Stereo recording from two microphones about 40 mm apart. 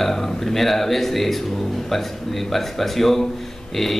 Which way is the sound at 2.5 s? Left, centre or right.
Centre.